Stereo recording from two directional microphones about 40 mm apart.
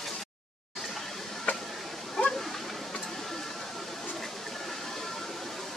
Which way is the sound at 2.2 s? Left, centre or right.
Centre.